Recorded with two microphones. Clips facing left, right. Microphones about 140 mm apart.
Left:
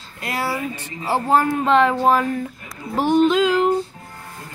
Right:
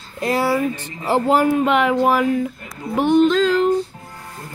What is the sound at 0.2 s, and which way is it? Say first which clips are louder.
Speech: right 6 dB; 25° right (ahead or behind).